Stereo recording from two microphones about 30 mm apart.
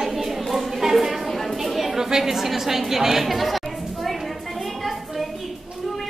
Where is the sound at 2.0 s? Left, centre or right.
Centre.